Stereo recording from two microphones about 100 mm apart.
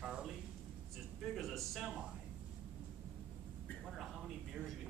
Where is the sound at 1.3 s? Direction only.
Centre (ahead or behind).